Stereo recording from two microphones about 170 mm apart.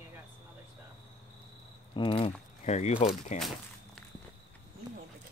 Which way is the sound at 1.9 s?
30° left (ahead or behind).